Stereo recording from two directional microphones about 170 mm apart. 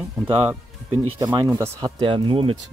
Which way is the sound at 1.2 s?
25° right (ahead or behind).